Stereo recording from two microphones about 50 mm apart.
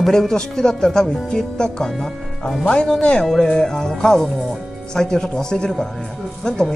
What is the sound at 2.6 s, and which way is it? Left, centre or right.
A man's voice, centre.